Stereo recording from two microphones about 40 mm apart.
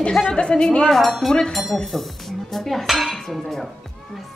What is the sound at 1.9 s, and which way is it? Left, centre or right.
Dishes, centre.